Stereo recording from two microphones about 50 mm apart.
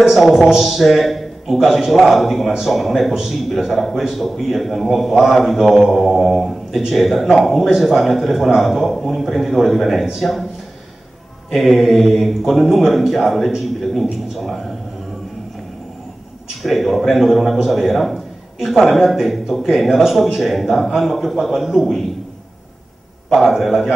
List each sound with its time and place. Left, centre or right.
0.0 s a man's voice: centre
11.5 s a man's voice: centre
16.4 s a man's voice: centre
23.3 s a man's voice: centre